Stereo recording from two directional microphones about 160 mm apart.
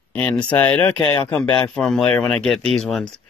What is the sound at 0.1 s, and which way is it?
Speech, 10° left (ahead or behind).